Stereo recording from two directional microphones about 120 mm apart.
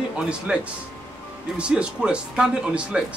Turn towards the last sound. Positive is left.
turn(degrees=-5)  # may be behind; listen again after turning